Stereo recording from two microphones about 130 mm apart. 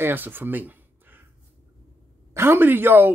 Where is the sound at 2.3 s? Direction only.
20° right (ahead or behind).